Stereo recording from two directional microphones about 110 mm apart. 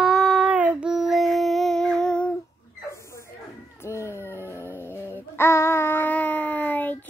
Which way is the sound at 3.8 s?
25° left (ahead or behind).